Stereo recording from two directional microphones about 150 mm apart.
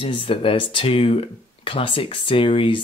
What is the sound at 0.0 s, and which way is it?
Speech, 35° left (ahead or behind).